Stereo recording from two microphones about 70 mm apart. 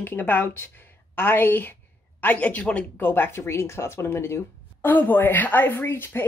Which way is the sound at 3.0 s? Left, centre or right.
Left.